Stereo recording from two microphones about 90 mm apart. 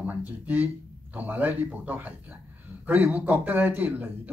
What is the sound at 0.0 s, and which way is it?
A man's voice, 15° right (ahead or behind).